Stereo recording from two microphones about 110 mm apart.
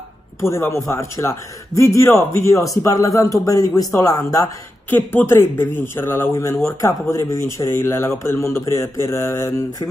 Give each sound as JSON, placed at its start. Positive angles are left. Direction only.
{"t": 0.4, "sound": "speech", "side_deg": 25}
{"t": 4.8, "sound": "speech", "side_deg": 20}